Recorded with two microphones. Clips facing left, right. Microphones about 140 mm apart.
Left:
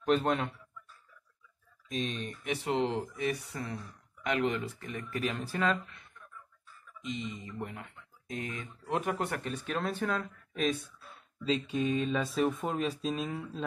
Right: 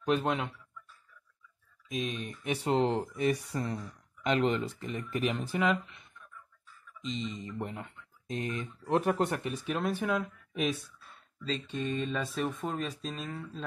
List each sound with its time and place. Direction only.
0.1 s speech: 10° right (ahead or behind)
1.9 s speech: 10° right (ahead or behind)
2.5 s speech: 35° right (ahead or behind)
9.3 s speech: 10° right (ahead or behind)
11.4 s speech: 5° left (ahead or behind)